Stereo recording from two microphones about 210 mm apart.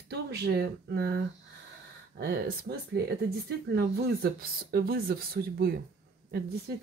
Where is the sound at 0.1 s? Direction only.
50° right (ahead or behind).